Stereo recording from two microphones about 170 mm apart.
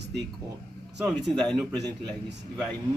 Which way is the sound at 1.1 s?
Centre (ahead or behind).